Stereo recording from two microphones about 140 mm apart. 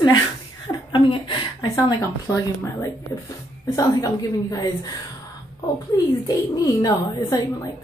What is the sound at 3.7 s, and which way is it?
Speech, 20° left (ahead or behind).